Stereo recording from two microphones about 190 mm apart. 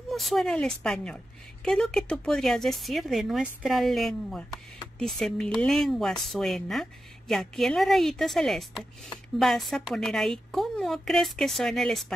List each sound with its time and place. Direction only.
0.1 s a woman's voice: centre (ahead or behind)